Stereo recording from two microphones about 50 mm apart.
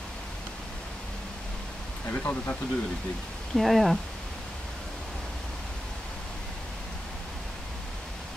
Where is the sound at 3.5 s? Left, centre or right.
Centre.